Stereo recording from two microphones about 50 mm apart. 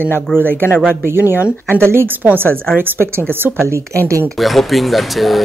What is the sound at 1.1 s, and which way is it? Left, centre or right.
Speech, right.